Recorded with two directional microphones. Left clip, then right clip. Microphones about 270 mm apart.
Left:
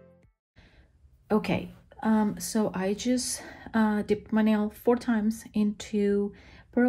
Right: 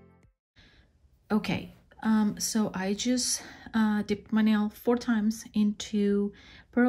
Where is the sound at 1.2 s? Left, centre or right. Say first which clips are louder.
Left 4 dB; centre.